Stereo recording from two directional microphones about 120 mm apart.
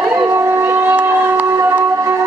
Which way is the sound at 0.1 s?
25° right (ahead or behind).